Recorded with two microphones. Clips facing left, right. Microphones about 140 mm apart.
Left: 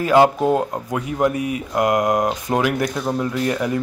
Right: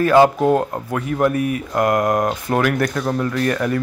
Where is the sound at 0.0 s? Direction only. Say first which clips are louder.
Right 2 dB; 15° left (ahead or behind).